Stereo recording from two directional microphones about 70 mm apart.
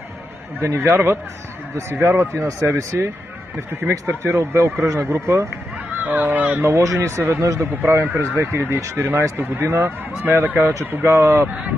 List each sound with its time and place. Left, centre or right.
0.6 s speech: right
4.1 s speech: right
6.0 s speech: right
6.6 s speech: right